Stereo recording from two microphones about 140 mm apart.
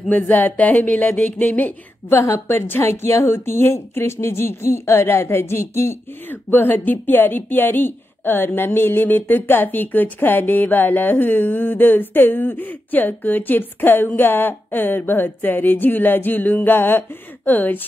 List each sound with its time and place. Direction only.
0.1 s a woman's voice: 15° left (ahead or behind)